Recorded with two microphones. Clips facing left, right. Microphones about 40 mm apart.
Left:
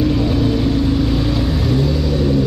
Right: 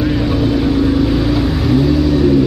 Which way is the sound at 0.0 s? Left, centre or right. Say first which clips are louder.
Right 1 dB; centre.